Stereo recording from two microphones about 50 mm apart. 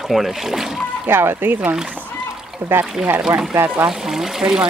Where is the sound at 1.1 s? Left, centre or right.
Right.